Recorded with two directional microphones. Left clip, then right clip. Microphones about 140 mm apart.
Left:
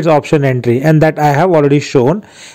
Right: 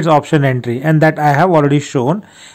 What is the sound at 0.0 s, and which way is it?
A man's voice, 25° left (ahead or behind).